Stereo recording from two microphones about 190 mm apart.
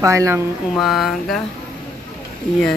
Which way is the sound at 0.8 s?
Centre (ahead or behind).